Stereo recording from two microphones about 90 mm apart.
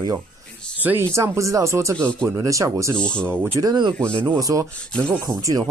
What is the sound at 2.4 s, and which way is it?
Speech, 35° right (ahead or behind).